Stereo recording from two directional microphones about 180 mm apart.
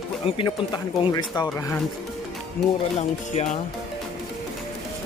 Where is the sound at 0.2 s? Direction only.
30° left (ahead or behind).